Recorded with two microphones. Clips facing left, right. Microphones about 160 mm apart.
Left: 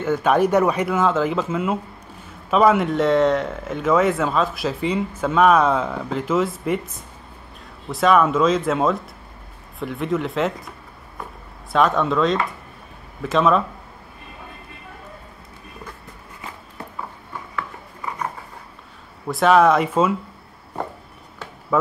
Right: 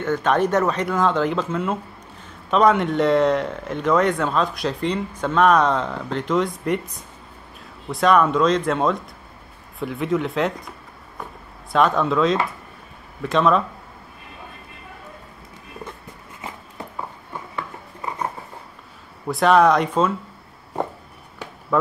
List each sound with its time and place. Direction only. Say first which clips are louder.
0.0 s speech: left 2 dB; 10° left (ahead or behind)
7.9 s speech: even; centre (ahead or behind)
11.7 s speech: even; centre (ahead or behind)
17.3 s a sound: even; 25° right (ahead or behind)
19.2 s speech: even; centre (ahead or behind)